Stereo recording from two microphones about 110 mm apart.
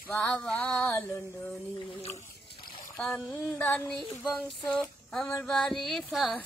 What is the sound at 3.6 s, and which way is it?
Female singing, 10° left (ahead or behind).